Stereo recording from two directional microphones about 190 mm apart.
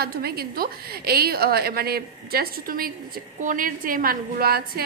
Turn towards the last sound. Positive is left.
turn(degrees=-55)  # may be behind; listen again after turning